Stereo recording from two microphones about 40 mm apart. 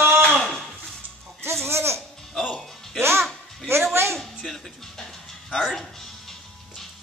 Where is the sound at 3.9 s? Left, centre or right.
Right.